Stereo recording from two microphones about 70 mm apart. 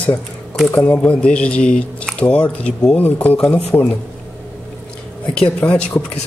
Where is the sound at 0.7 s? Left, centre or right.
Left.